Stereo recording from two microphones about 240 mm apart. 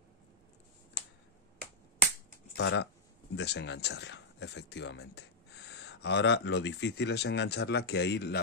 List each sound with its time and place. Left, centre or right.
2.5 s speech: left